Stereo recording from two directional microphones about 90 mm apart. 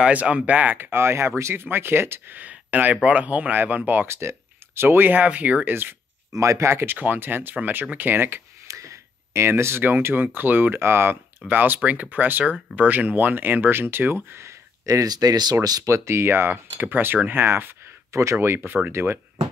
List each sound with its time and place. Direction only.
0.0 s speech: 15° right (ahead or behind)
6.3 s speech: 35° right (ahead or behind)
8.6 s speech: 35° right (ahead or behind)